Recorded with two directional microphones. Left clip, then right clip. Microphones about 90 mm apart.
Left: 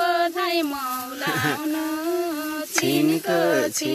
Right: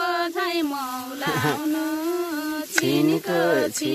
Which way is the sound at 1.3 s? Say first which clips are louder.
Even; 40° right (ahead or behind).